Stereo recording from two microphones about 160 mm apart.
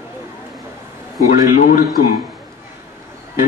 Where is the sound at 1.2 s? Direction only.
60° left (ahead or behind).